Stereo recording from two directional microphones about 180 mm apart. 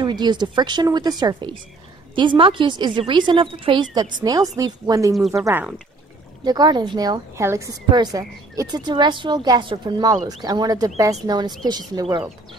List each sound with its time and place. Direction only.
0.0 s a woman's voice: 25° right (ahead or behind)
5.1 s speech: centre (ahead or behind)
6.4 s a woman's voice: 25° right (ahead or behind)